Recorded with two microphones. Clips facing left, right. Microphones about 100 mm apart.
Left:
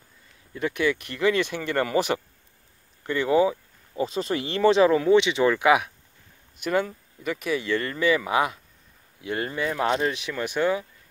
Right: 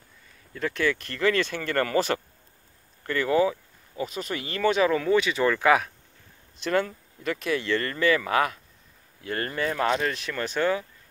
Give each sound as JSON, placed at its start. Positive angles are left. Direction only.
{"t": 0.6, "sound": "speech", "side_deg": 15}
{"t": 3.1, "sound": "a sound", "side_deg": 20}
{"t": 4.0, "sound": "speech", "side_deg": 30}